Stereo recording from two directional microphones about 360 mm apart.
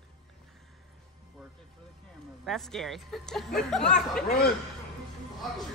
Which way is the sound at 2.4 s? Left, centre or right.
Centre.